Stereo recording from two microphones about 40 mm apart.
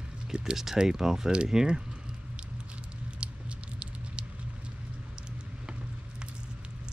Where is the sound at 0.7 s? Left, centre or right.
Centre.